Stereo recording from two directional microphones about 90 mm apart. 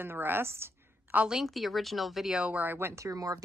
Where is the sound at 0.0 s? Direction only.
25° right (ahead or behind).